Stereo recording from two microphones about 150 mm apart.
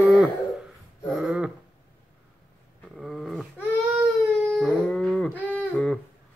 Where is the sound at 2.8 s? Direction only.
Centre (ahead or behind).